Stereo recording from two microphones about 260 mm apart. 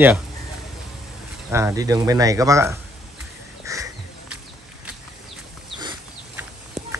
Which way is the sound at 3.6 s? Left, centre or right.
Centre.